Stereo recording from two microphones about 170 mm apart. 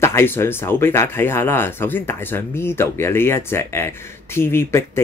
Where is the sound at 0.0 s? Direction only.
15° left (ahead or behind).